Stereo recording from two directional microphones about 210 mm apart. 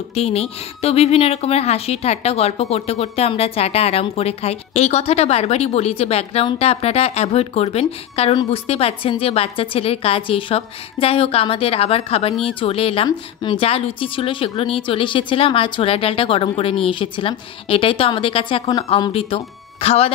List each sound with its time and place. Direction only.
0.1 s speech: 30° left (ahead or behind)